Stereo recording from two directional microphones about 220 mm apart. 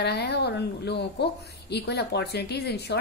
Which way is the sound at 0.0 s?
50° left (ahead or behind).